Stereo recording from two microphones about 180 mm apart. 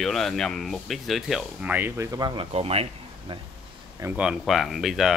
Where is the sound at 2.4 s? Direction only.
35° right (ahead or behind).